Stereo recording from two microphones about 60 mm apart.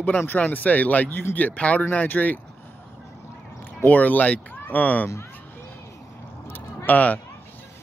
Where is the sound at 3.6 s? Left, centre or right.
Left.